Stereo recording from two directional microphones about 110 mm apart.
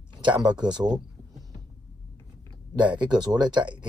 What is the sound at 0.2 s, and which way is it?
Speech, 45° right (ahead or behind).